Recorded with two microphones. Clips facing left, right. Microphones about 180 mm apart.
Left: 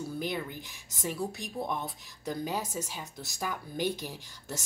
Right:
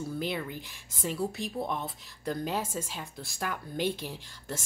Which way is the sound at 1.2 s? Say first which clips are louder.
Right 4 dB; 5° right (ahead or behind).